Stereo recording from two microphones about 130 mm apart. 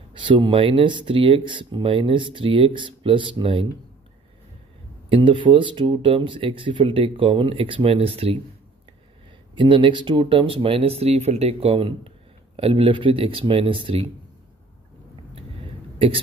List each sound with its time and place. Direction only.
0.1 s speech: 40° right (ahead or behind)
5.1 s speech: 40° right (ahead or behind)
9.6 s speech: 40° right (ahead or behind)